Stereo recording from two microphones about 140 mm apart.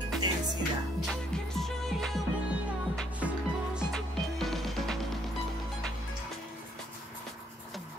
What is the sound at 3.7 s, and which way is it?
Music, centre (ahead or behind).